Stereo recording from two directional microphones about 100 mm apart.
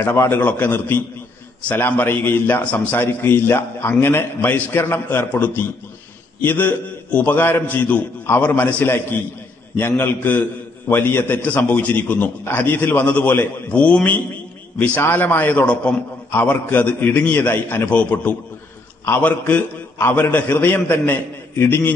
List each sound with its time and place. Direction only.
0.0 s a man's voice: 25° left (ahead or behind)